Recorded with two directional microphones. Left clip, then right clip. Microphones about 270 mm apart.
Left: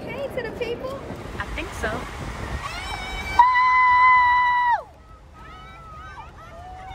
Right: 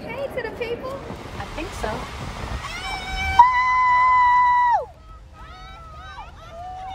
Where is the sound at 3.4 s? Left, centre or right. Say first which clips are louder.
Left 1 dB; right.